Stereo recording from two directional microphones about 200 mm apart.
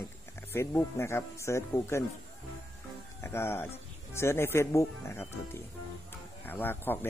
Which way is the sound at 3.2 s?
10° left (ahead or behind).